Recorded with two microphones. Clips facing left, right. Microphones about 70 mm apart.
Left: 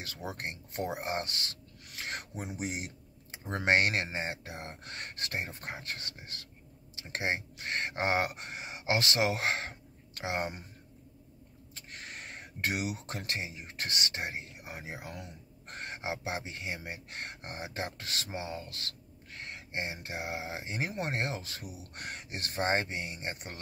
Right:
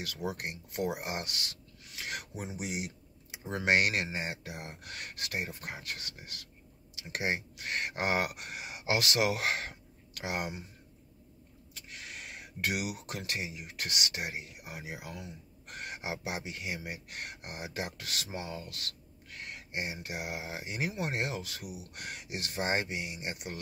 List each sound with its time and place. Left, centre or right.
0.0 s speech: left
11.7 s a sound: left
13.2 s speech: left